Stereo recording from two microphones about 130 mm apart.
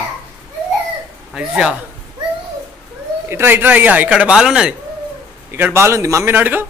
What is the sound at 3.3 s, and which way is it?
Speech, 15° right (ahead or behind).